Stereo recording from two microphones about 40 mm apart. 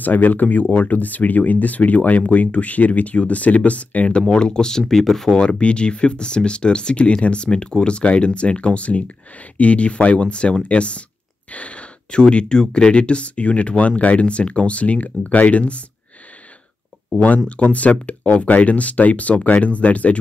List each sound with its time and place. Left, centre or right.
0.0 s speech: left
4.3 s speech: centre
5.4 s speech: left
17.1 s speech: left